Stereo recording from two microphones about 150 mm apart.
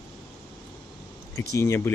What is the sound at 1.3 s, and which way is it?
Speech, 20° left (ahead or behind).